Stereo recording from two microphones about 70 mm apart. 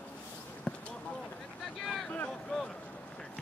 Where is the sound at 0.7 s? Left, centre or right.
Centre.